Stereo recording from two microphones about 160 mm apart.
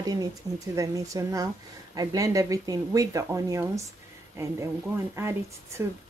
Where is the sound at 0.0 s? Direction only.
25° right (ahead or behind).